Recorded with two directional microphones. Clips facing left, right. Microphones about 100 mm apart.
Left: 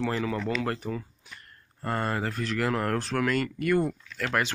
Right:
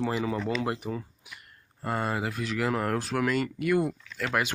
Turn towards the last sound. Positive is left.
turn(degrees=-10)  # may be behind; listen again after turning